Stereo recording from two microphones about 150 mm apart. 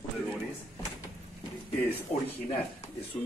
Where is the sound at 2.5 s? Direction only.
45° left (ahead or behind).